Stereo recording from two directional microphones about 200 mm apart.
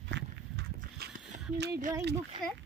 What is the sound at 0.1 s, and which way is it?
Horse, 55° right (ahead or behind).